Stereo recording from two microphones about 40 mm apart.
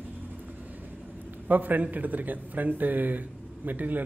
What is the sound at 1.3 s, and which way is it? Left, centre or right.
Speech, right.